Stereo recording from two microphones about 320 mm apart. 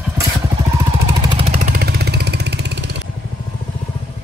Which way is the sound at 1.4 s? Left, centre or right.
Right.